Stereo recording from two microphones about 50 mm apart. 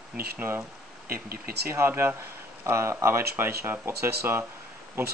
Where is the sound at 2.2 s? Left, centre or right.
Right.